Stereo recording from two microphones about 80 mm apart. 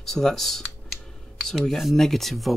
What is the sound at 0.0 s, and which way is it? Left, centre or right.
Speech, centre.